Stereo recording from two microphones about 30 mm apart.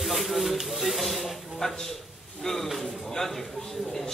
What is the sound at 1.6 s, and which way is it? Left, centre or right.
Speech, left.